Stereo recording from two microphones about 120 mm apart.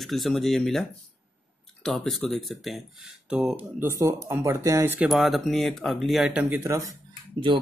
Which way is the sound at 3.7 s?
20° right (ahead or behind).